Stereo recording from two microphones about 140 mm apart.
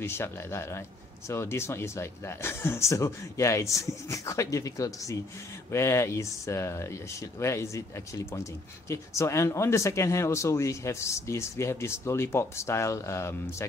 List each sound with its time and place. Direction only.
0.0 s speech: 15° left (ahead or behind)
8.8 s speech: 20° left (ahead or behind)